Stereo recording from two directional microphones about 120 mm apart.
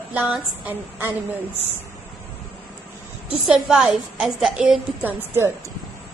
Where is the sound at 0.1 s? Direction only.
10° right (ahead or behind).